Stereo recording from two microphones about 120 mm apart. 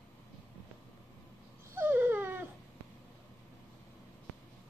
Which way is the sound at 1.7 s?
20° right (ahead or behind).